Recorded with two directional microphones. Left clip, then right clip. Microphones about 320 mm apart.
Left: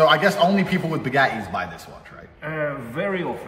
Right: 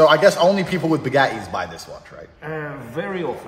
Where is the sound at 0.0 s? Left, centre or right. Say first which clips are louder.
Right 3 dB; right.